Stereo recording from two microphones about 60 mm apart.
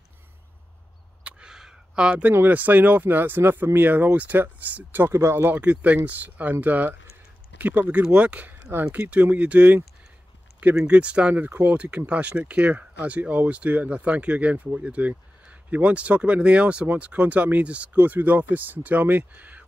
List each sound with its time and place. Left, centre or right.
1.2 s a sound: centre
2.3 s speech: right
5.1 s speech: right
5.5 s speech: right
10.9 s speech: right